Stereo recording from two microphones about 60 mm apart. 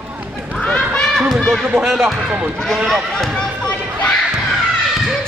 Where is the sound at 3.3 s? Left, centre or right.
Centre.